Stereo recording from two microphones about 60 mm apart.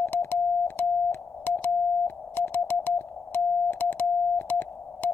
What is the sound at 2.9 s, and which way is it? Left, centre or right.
Music, left.